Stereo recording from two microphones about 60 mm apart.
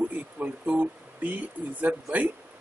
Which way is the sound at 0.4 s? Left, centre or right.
Right.